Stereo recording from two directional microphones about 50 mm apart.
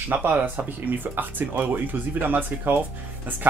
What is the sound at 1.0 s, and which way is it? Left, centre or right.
Speech, right.